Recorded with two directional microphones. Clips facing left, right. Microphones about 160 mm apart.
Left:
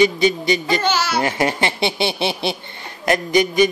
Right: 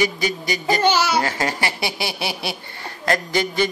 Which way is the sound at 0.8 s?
15° right (ahead or behind).